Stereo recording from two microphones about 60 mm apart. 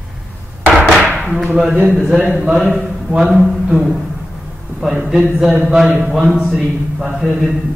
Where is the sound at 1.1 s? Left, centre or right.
Centre.